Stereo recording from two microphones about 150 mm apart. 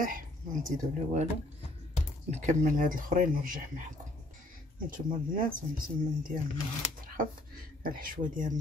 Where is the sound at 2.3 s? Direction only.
55° right (ahead or behind).